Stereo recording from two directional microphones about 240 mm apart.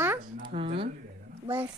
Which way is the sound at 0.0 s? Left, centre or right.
Centre.